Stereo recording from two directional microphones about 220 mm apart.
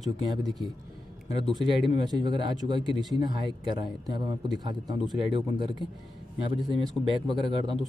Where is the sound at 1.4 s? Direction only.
20° right (ahead or behind).